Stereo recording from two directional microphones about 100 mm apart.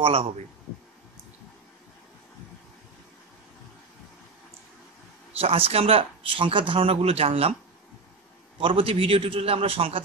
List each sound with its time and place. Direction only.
0.0 s speech: 70° right (ahead or behind)
5.4 s speech: 80° right
8.5 s speech: 65° right (ahead or behind)